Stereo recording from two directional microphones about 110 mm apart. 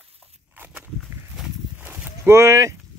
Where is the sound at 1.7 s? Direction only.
15° right (ahead or behind).